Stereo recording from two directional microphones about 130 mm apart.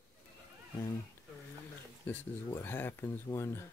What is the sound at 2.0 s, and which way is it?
Speech, 15° left (ahead or behind).